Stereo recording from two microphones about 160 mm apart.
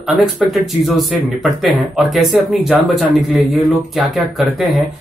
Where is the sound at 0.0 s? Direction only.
Centre (ahead or behind).